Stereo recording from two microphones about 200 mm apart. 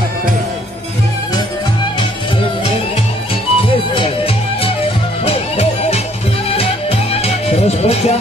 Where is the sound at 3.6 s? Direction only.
25° left (ahead or behind).